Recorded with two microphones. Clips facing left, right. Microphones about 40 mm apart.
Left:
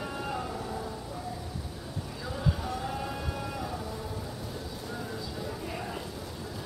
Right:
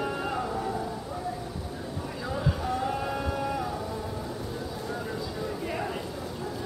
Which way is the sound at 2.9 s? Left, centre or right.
Centre.